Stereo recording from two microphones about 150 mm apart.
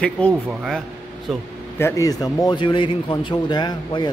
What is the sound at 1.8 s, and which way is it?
Speech, 20° left (ahead or behind).